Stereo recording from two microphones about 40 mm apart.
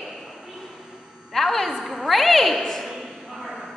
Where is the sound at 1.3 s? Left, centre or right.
Centre.